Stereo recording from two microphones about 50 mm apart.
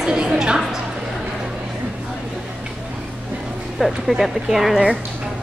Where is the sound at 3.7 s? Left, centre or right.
Centre.